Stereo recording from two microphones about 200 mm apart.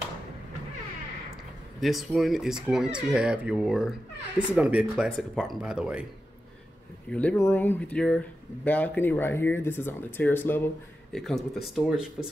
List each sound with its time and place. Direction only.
1.8 s speech: centre (ahead or behind)
7.1 s speech: 5° left (ahead or behind)